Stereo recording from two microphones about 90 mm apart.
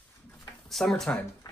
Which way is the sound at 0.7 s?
Centre (ahead or behind).